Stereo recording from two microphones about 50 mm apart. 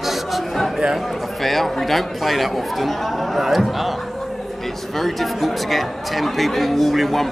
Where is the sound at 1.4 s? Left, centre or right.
Centre.